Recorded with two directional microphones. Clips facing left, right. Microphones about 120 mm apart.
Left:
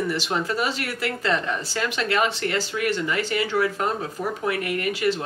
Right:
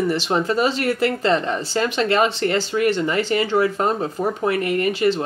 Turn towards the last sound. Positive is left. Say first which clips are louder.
# right 5 dB
turn(degrees=-30)  # may be behind; listen again after turning